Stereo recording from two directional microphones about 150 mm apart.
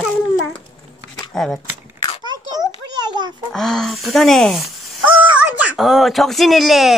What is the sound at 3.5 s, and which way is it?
Speech, 5° left (ahead or behind).